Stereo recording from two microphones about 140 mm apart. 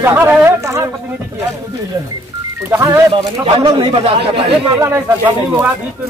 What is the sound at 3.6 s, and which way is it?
Speech, 35° right (ahead or behind).